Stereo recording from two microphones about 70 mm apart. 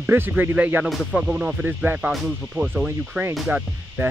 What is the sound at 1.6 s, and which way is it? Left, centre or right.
Speech, right.